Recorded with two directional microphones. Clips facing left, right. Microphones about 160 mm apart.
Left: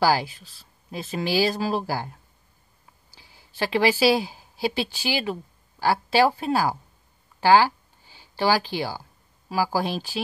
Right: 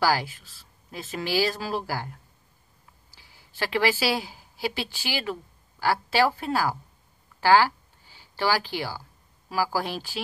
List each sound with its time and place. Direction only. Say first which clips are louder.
0.9 s speech: left 3 dB; 20° left (ahead or behind)
3.5 s speech: left 3 dB; 20° left (ahead or behind)
7.3 s a sound: left 2 dB; 20° left (ahead or behind)
9.5 s speech: left 3 dB; 20° left (ahead or behind)